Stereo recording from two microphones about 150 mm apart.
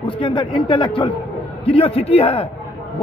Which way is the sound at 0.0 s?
30° left (ahead or behind).